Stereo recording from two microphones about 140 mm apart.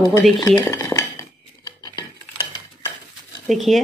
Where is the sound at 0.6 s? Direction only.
15° left (ahead or behind).